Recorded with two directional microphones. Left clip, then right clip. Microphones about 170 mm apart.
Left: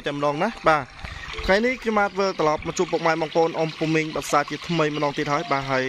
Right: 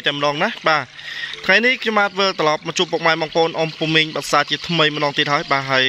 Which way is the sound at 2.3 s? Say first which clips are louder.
Right 4 dB; 20° right (ahead or behind).